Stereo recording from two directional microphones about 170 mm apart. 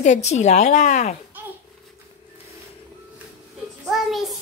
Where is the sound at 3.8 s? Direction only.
Centre (ahead or behind).